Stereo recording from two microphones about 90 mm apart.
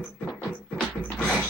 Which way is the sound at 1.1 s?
5° left (ahead or behind).